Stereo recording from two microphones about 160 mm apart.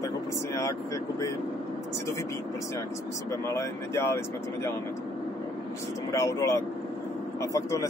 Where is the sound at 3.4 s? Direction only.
15° left (ahead or behind).